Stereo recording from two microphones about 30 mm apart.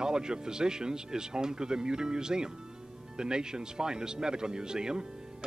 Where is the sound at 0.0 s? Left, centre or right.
Right.